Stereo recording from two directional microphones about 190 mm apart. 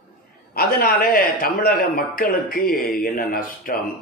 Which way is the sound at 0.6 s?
50° left (ahead or behind).